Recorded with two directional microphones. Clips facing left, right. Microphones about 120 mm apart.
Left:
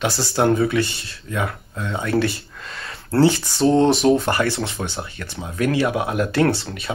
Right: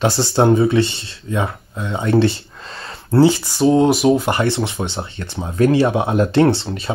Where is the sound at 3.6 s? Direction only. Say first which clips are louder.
Right 2 dB; 5° right (ahead or behind).